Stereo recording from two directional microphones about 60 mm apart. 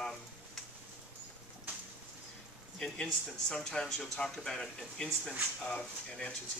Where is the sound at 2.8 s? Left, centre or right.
Centre.